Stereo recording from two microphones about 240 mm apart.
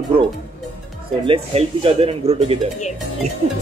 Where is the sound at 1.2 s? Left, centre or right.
Right.